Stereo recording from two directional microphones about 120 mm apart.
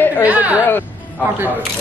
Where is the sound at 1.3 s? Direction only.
15° right (ahead or behind).